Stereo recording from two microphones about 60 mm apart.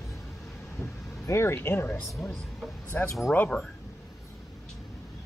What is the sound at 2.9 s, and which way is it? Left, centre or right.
Speech, left.